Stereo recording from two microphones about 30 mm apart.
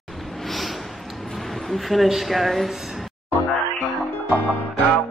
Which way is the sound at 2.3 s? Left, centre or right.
Centre.